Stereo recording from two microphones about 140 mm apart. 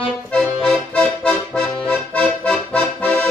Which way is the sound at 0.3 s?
5° left (ahead or behind).